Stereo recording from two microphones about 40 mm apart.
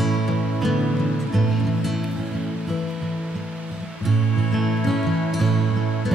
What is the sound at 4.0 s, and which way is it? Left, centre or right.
Music, centre.